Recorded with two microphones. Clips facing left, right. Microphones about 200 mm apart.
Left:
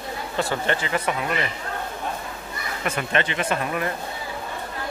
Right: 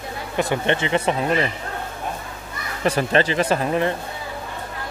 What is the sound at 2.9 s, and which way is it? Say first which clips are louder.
Speech: right 6 dB; 35° right (ahead or behind).